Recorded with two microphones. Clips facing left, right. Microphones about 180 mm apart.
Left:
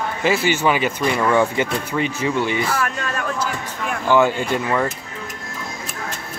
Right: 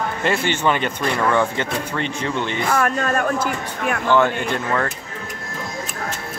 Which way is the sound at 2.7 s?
45° right (ahead or behind).